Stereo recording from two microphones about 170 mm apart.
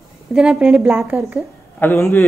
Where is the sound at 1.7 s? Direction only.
15° left (ahead or behind).